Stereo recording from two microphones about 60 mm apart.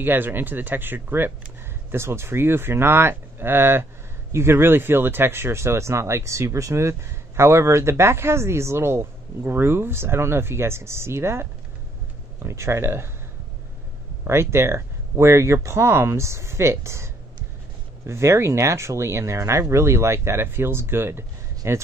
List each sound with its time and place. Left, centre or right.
0.0 s speech: right
14.2 s speech: right